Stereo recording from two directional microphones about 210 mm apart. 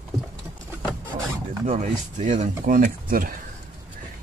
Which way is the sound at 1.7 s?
35° right (ahead or behind).